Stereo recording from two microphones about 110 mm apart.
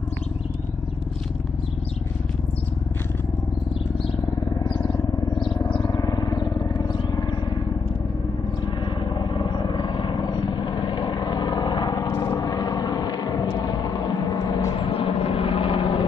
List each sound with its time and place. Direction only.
4.6 s a sound: 50° left (ahead or behind)
9.1 s vehicle: 45° left (ahead or behind)
14.8 s vehicle: 55° left (ahead or behind)